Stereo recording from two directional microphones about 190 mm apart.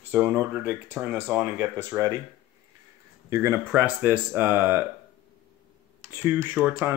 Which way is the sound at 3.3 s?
15° right (ahead or behind).